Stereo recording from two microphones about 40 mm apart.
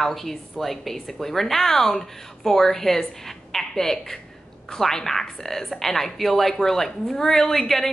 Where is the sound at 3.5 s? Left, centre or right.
Centre.